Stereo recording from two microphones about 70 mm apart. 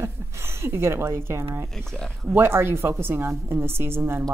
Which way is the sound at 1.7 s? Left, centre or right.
Centre.